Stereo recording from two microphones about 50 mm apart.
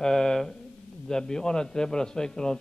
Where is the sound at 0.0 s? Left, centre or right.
Centre.